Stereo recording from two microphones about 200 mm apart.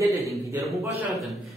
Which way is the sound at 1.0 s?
Centre (ahead or behind).